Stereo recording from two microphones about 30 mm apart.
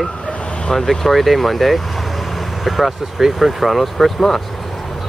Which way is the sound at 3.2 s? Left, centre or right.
Centre.